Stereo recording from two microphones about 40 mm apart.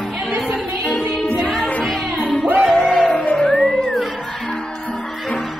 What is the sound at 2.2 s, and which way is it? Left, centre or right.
Music, left.